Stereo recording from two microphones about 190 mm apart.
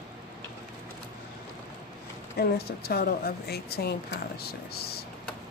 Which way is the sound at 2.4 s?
55° left (ahead or behind).